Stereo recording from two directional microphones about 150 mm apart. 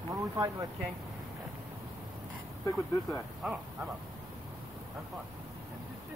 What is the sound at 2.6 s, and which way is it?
Speech, 20° left (ahead or behind).